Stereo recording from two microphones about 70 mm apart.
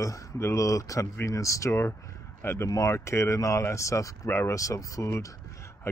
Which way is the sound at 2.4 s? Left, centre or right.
Left.